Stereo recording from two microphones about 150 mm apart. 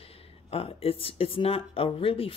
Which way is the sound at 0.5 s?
40° left (ahead or behind).